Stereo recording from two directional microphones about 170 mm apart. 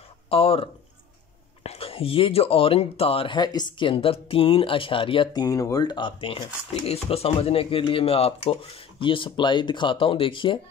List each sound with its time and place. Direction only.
0.3 s speech: 35° left (ahead or behind)